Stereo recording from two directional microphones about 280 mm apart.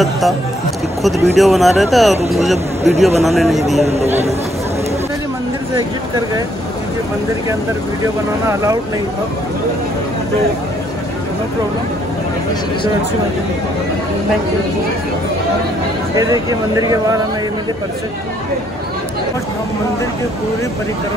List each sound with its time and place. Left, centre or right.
1.0 s speech: centre
2.5 s speech: right
3.3 s speech: centre
3.8 s speech: right
5.8 s speech: centre
16.2 s speech: centre